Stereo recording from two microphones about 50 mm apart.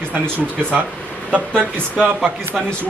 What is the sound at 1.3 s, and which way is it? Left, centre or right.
Speech, right.